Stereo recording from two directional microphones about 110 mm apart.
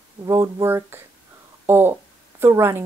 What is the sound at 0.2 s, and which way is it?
A woman's voice, 30° right (ahead or behind).